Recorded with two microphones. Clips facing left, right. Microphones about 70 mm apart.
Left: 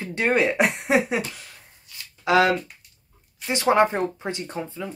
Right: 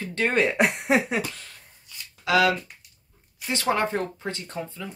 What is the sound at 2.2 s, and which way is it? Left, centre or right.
Speech, left.